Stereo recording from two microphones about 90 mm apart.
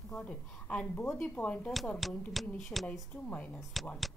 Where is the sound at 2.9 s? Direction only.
15° left (ahead or behind).